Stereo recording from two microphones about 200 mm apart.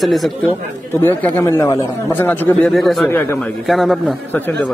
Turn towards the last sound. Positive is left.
turn(degrees=5)  # may be behind; listen again after turning